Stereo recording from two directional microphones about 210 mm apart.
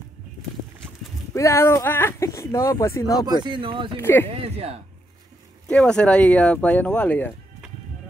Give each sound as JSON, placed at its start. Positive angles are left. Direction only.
{"t": 1.3, "sound": "speech", "side_deg": 15}
{"t": 3.3, "sound": "speech", "side_deg": -20}
{"t": 3.9, "sound": "speech", "side_deg": 10}
{"t": 4.3, "sound": "speech", "side_deg": -30}
{"t": 5.7, "sound": "speech", "side_deg": 5}